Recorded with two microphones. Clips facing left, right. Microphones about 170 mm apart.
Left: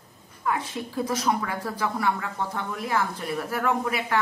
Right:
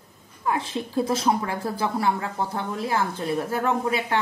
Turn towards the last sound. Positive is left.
turn(degrees=-25)  # may be behind; listen again after turning